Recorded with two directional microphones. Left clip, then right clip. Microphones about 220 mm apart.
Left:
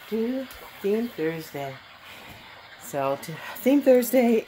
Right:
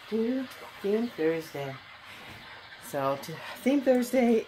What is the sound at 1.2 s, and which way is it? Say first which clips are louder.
Speech: even; 40° left (ahead or behind).